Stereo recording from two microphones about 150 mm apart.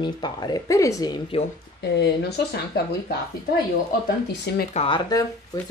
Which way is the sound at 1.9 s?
90° left.